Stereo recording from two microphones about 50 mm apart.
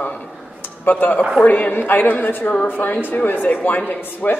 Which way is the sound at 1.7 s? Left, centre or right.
Left.